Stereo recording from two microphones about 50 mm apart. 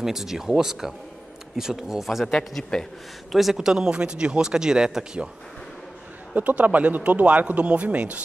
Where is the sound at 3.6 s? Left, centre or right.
Centre.